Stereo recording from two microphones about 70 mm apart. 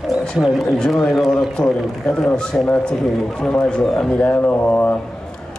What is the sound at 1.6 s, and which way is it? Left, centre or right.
A man's voice, centre.